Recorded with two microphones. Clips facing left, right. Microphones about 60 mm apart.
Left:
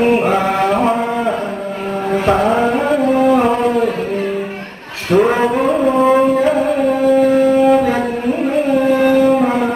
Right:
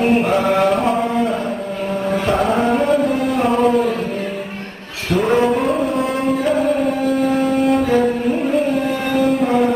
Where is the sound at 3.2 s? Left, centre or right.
Left.